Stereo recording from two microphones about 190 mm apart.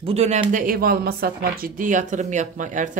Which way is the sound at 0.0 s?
35° right (ahead or behind).